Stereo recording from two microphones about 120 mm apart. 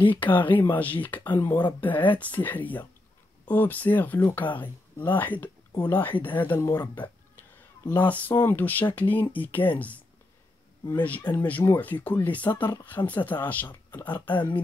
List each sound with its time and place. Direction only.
0.1 s speech: 15° left (ahead or behind)